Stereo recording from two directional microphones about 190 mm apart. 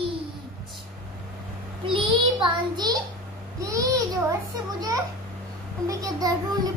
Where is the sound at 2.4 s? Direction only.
20° right (ahead or behind).